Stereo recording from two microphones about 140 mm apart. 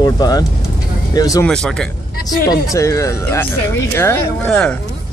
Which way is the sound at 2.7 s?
20° left (ahead or behind).